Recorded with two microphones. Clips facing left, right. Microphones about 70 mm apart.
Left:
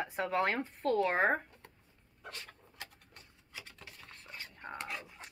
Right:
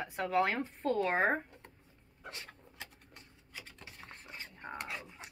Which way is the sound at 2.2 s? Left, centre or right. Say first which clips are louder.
Even; centre.